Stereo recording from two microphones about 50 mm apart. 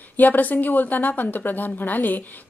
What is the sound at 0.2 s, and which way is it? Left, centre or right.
A woman's voice, left.